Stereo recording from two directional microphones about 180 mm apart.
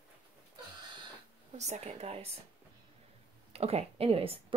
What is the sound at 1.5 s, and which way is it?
Speech, 40° right (ahead or behind).